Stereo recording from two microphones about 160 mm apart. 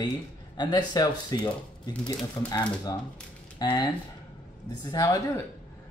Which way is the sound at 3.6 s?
25° left (ahead or behind).